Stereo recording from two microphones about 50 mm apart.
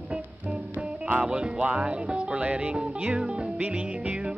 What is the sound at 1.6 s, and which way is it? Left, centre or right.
Music, right.